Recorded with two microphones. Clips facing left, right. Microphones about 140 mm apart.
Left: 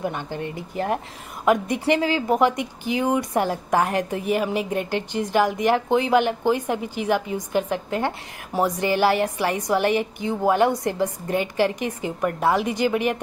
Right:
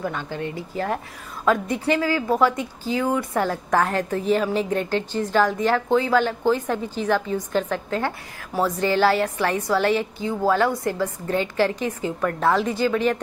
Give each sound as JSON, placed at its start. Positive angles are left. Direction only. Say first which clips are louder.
{"t": 0.0, "sound": "a woman's voice", "louder": "even", "side_deg": 15}